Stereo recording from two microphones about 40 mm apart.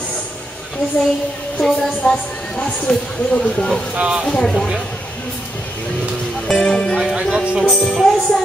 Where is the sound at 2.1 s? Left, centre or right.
Left.